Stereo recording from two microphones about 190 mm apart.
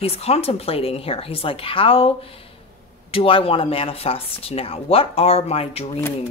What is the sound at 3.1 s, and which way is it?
Speech, 30° left (ahead or behind).